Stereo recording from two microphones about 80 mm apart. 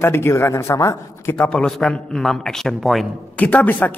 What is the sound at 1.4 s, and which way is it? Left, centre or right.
A man's voice, centre.